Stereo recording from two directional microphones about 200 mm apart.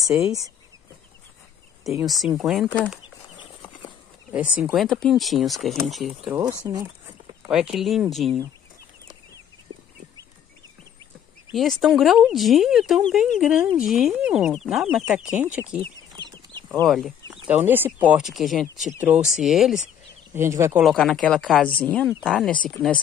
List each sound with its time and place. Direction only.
0.0 s speech: centre (ahead or behind)
2.0 s speech: centre (ahead or behind)
4.6 s speech: centre (ahead or behind)
6.7 s speech: 20° right (ahead or behind)
7.4 s speech: 5° right (ahead or behind)
9.7 s livestock: 90° right
11.5 s speech: centre (ahead or behind)
16.8 s speech: centre (ahead or behind)
20.3 s speech: 15° right (ahead or behind)
20.8 s speech: 5° left (ahead or behind)